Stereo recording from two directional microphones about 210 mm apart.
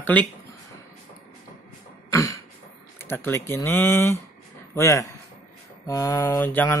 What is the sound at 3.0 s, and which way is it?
Speech, 10° left (ahead or behind).